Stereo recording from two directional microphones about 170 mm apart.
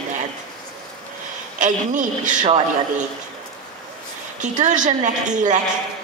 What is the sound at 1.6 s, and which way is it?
A woman's voice, 50° right (ahead or behind).